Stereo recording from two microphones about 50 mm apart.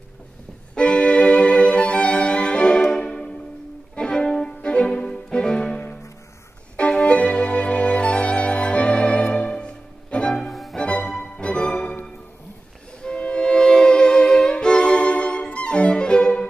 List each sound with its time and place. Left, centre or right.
0.7 s music: left
6.8 s music: left
10.5 s music: centre
10.8 s music: centre
13.0 s music: centre